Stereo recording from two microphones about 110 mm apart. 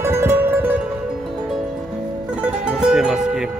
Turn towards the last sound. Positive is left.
turn(degrees=-5)  # may be behind; listen again after turning